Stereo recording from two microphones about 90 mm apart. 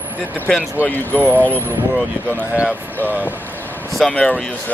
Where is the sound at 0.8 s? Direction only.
15° left (ahead or behind).